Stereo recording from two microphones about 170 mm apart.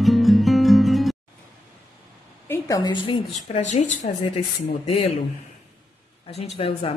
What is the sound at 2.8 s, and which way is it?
Speech, 25° left (ahead or behind).